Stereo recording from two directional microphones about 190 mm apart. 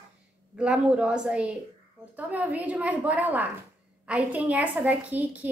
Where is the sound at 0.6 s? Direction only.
5° right (ahead or behind).